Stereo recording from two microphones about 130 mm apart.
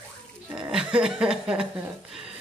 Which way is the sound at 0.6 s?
5° right (ahead or behind).